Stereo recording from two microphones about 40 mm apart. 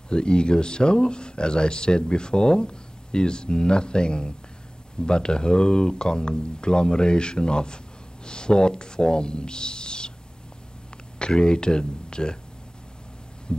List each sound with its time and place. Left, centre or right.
0.1 s speech: left
11.1 s speech: left
13.5 s heart sounds: left